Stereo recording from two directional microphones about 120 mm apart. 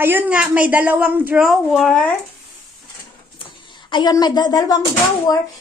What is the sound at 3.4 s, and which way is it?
Speech, 40° left (ahead or behind).